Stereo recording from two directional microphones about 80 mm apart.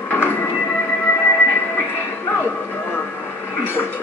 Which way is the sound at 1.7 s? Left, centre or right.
Left.